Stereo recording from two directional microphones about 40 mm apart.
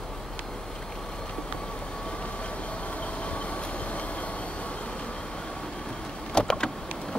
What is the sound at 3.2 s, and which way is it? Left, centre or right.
Train, left.